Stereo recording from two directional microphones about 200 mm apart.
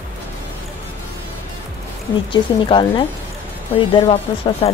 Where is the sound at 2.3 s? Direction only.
25° left (ahead or behind).